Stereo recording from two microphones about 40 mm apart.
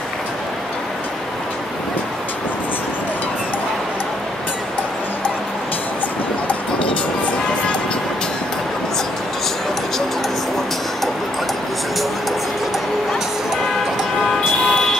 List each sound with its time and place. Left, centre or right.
14.6 s vehicle: centre